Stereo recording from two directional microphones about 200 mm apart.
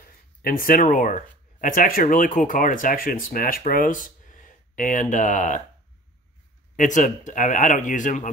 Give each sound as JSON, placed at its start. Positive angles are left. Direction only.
{"t": 0.4, "sound": "speech", "side_deg": 45}
{"t": 6.8, "sound": "speech", "side_deg": 40}